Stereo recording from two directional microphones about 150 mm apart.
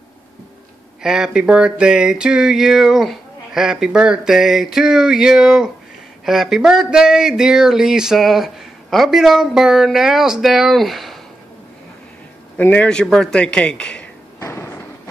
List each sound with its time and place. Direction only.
1.0 s speech: 5° right (ahead or behind)
12.5 s a man's voice: 10° left (ahead or behind)
14.4 s thump: 15° left (ahead or behind)